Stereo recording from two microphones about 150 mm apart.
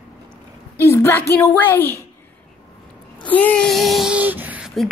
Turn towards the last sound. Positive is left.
turn(degrees=-5)  # may be behind; listen again after turning